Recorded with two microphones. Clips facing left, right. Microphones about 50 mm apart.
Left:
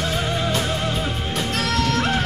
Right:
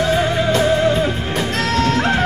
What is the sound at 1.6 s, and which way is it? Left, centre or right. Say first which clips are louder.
Music: right 4 dB; right.